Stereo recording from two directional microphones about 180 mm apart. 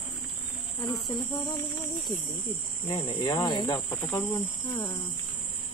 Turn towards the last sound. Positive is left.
turn(degrees=20)  # may be behind; listen again after turning